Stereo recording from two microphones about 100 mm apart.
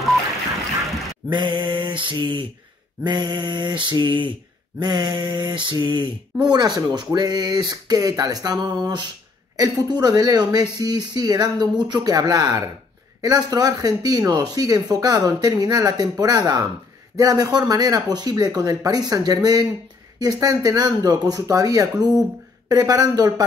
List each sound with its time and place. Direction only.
1.3 s speech: 50° right (ahead or behind)